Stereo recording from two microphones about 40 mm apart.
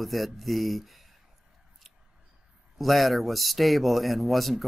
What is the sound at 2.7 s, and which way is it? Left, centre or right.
Speech, centre.